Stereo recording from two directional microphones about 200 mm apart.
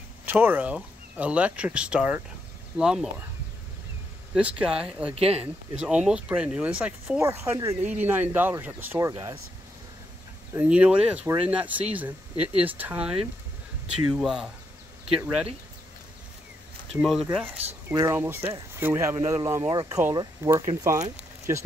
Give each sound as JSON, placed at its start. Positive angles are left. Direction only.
{"t": 0.2, "sound": "speech", "side_deg": -10}
{"t": 4.3, "sound": "speech", "side_deg": -5}
{"t": 5.1, "sound": "speech", "side_deg": -30}
{"t": 5.8, "sound": "speech", "side_deg": -5}
{"t": 10.5, "sound": "speech", "side_deg": -5}
{"t": 16.9, "sound": "speech", "side_deg": -5}
{"t": 17.9, "sound": "speech", "side_deg": -15}